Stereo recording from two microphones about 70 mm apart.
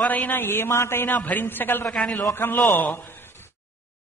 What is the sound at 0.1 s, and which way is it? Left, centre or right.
A man's voice, left.